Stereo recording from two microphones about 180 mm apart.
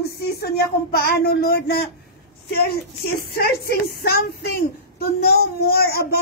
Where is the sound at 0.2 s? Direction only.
60° left (ahead or behind).